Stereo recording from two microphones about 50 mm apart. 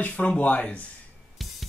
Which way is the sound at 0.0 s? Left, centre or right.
Left.